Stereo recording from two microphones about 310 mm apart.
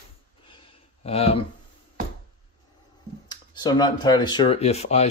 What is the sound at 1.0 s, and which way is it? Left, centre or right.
Speech, centre.